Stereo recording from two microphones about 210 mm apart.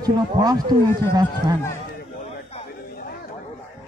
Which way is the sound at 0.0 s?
20° right (ahead or behind).